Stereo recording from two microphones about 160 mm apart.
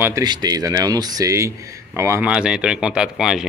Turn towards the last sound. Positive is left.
turn(degrees=-5)  # may be behind; listen again after turning